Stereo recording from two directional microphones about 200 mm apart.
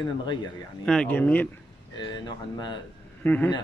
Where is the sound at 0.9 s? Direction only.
5° left (ahead or behind).